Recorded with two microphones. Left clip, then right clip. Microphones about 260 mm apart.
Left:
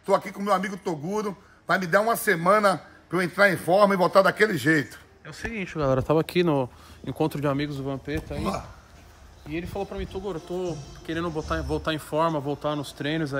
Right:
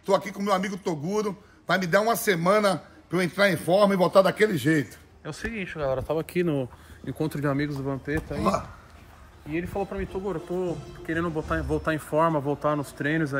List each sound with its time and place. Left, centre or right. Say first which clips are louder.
0.0 s a man's voice: even; centre
5.8 s speech: left 5 dB; left
7.3 s speech: left 1 dB; left
8.4 s speech: right 7 dB; centre
9.5 s speech: right 2 dB; centre